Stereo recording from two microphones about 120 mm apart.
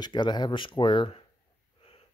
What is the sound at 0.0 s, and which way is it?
Speech, 40° left (ahead or behind).